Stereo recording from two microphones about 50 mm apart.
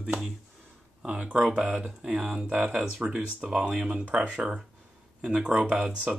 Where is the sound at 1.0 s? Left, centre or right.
Right.